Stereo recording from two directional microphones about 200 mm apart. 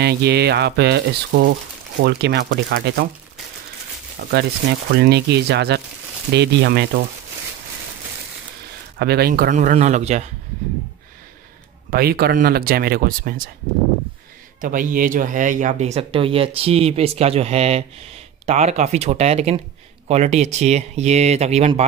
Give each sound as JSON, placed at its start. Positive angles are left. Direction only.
{"t": 0.0, "sound": "speech", "side_deg": -55}
{"t": 4.2, "sound": "speech", "side_deg": -50}
{"t": 8.9, "sound": "speech", "side_deg": -50}
{"t": 11.9, "sound": "speech", "side_deg": -50}
{"t": 14.6, "sound": "speech", "side_deg": -40}